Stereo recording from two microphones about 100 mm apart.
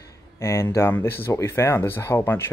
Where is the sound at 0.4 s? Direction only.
30° left (ahead or behind).